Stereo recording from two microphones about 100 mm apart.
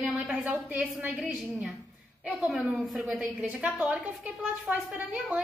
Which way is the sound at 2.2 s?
15° right (ahead or behind).